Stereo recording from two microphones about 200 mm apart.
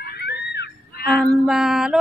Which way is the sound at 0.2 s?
55° left (ahead or behind).